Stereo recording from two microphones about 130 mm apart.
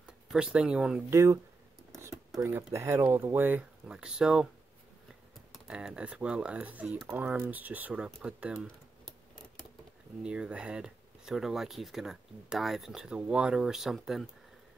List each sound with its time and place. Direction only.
0.0 s speech: 5° right (ahead or behind)
1.1 s speech: 25° right (ahead or behind); by 4.5 s 5° right (ahead or behind)
5.7 s speech: 5° right (ahead or behind)
10.2 s speech: 5° right (ahead or behind)